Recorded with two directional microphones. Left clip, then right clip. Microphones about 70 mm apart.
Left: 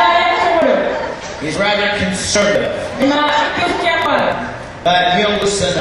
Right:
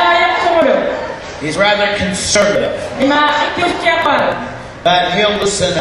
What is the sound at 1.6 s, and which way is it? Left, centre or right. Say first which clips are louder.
A woman's voice: right 3 dB; right.